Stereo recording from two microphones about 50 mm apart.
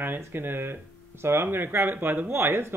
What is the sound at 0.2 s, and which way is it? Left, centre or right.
Speech, right.